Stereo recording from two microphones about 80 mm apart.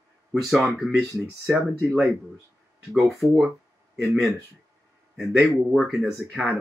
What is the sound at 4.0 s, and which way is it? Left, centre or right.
Speech, centre.